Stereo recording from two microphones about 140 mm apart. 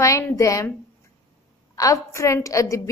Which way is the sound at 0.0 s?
20° left (ahead or behind).